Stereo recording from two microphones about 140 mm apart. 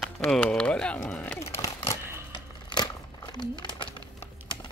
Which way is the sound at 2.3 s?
30° left (ahead or behind).